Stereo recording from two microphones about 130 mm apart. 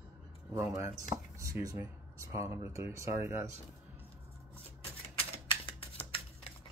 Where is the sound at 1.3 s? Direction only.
25° right (ahead or behind).